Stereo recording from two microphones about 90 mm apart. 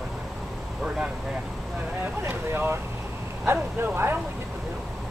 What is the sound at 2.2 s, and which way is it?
Vehicle, 25° right (ahead or behind).